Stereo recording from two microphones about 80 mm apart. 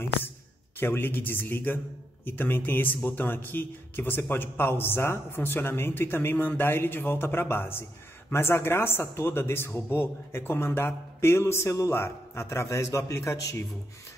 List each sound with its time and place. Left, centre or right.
0.7 s a man's voice: left